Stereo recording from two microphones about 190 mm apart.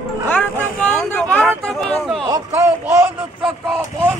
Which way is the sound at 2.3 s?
10° right (ahead or behind).